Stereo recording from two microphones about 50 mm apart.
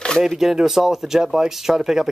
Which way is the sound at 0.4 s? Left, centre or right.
Centre.